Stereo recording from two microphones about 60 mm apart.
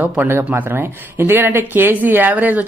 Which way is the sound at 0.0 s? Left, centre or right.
Right.